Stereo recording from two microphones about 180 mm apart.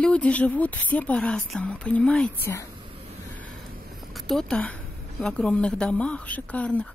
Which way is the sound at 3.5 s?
50° right (ahead or behind).